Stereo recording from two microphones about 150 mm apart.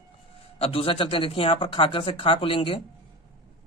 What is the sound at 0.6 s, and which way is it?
Speech, 40° left (ahead or behind).